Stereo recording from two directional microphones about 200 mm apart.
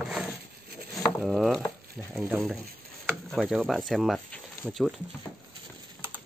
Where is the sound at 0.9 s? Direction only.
Centre (ahead or behind).